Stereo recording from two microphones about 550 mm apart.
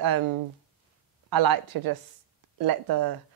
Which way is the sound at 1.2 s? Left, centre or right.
Right.